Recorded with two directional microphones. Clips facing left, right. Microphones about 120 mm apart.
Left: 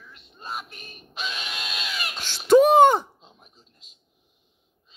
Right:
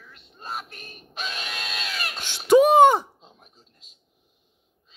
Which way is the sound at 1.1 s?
45° right (ahead or behind).